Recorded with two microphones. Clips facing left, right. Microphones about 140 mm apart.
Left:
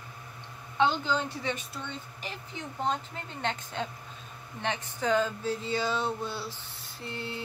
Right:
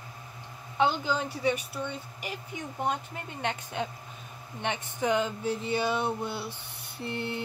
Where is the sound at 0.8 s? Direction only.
10° right (ahead or behind).